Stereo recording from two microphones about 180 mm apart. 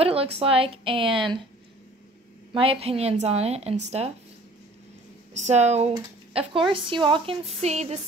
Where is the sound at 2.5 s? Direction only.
30° right (ahead or behind).